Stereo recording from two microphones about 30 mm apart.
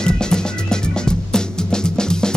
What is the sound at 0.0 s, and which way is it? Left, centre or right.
Music, left.